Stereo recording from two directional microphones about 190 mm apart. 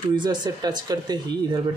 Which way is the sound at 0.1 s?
25° right (ahead or behind).